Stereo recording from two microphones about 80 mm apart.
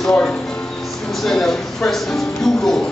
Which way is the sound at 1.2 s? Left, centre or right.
Centre.